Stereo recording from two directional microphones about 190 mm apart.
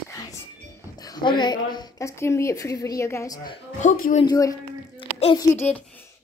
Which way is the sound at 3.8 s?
40° left (ahead or behind).